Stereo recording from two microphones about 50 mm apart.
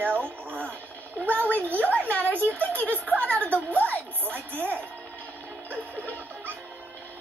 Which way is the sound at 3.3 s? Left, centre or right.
Left.